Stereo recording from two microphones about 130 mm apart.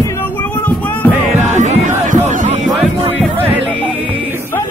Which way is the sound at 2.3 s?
70° right (ahead or behind).